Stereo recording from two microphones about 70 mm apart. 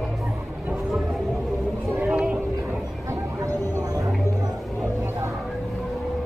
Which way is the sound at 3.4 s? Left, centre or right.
Right.